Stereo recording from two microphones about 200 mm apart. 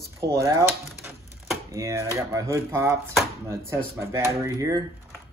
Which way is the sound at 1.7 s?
15° right (ahead or behind).